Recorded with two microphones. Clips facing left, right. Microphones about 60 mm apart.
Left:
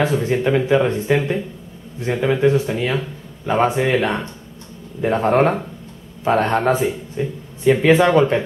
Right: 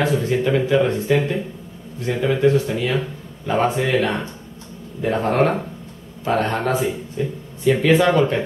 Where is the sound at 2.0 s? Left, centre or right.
Left.